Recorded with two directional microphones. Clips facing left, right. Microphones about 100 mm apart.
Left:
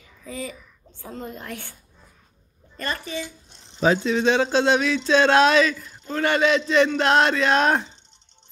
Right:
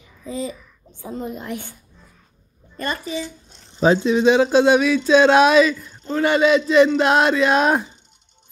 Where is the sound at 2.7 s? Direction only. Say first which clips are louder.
Right 3 dB; 15° right (ahead or behind).